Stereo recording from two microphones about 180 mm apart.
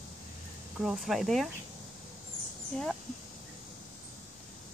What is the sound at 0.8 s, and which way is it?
Speech, centre (ahead or behind).